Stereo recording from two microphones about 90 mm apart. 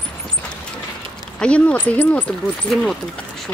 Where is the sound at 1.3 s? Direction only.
10° left (ahead or behind).